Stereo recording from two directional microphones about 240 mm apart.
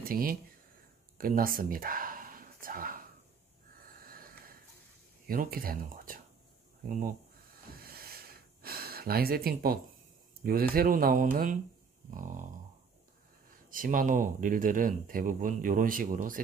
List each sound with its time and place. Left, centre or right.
0.0 s speech: right
1.1 s a sound: right
4.0 s a sound: right
5.2 s speech: right
7.8 s gasp: right
10.4 s speech: right
13.5 s speech: right